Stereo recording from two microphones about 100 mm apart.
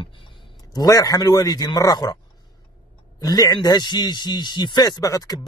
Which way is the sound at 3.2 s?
40° left (ahead or behind).